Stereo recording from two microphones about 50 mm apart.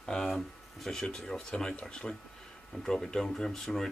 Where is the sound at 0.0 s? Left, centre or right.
Centre.